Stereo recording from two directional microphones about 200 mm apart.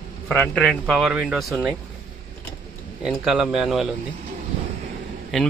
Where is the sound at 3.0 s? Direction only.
5° right (ahead or behind).